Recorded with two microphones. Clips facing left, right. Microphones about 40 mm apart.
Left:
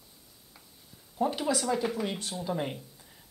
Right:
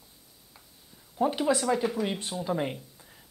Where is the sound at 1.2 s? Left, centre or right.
Centre.